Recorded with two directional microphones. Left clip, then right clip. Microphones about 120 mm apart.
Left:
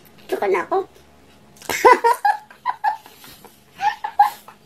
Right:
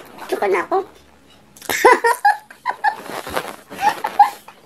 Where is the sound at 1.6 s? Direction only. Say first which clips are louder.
Even; 15° right (ahead or behind).